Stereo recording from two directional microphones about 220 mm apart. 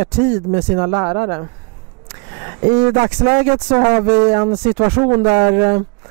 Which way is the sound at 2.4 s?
20° right (ahead or behind).